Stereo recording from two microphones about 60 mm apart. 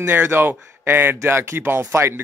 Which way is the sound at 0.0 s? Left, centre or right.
Right.